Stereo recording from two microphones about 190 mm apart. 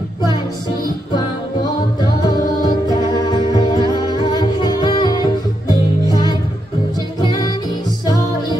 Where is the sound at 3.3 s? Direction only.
20° left (ahead or behind).